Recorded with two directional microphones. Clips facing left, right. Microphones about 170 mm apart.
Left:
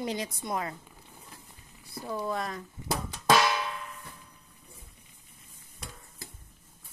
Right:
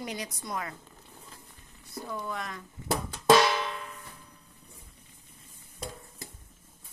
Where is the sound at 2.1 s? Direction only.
35° left (ahead or behind).